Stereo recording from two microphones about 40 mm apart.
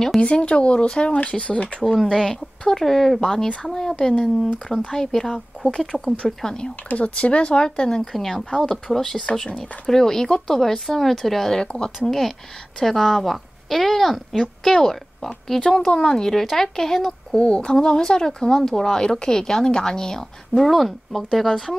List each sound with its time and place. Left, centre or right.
0.2 s speech: left
2.0 s a woman's voice: centre
6.9 s speech: left
8.0 s a woman's voice: centre
11.6 s speech: left
12.1 s speech: centre
15.9 s a woman's voice: left
17.4 s a woman's voice: left; by 21.7 s centre